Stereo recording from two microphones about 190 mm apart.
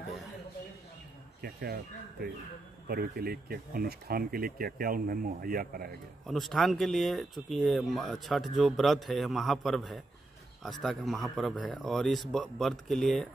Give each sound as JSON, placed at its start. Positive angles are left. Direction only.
{"t": 1.4, "sound": "speech", "side_deg": -55}
{"t": 2.9, "sound": "speech", "side_deg": -55}
{"t": 6.2, "sound": "speech", "side_deg": 0}